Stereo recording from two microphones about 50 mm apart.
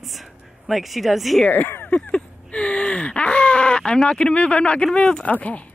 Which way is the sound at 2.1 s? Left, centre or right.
Left.